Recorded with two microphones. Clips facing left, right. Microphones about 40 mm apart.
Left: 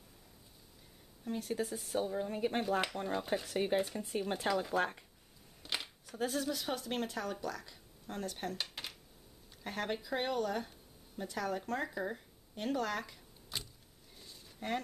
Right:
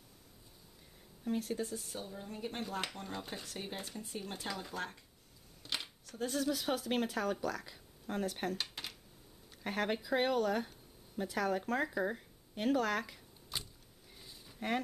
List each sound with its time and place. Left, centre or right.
1.2 s speech: centre
1.5 s a woman's voice: centre
5.6 s camera: centre
6.3 s speech: centre
8.5 s a sound: centre
9.6 s speech: centre
14.1 s a sound: centre